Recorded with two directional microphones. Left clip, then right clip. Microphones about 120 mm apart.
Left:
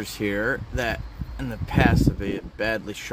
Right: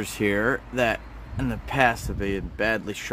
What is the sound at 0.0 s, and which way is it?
Speech, 30° right (ahead or behind).